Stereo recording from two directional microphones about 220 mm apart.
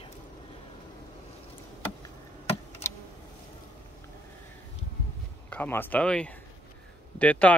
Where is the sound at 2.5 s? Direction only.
30° left (ahead or behind).